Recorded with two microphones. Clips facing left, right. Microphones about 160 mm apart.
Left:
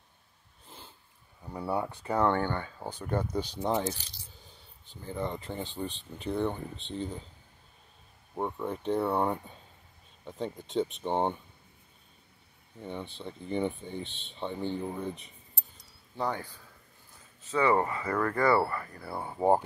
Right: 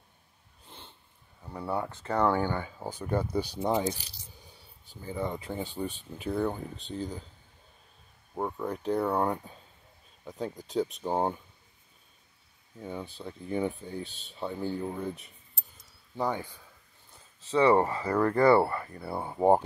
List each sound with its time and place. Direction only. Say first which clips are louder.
0.7 s sniff: even; centre (ahead or behind)
1.4 s speech: left 1 dB; 10° left (ahead or behind)
2.1 s speech: right 1 dB; 5° right (ahead or behind)
8.4 s speech: even; centre (ahead or behind)
12.7 s speech: right 1 dB; 5° right (ahead or behind)
15.8 s cricket: right 2 dB; 15° right (ahead or behind)
17.5 s speech: right 3 dB; 30° right (ahead or behind)